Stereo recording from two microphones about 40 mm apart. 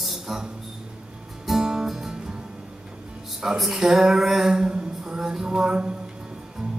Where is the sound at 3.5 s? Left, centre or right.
Centre.